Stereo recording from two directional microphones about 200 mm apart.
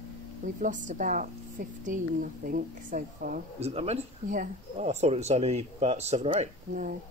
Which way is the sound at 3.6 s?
30° right (ahead or behind).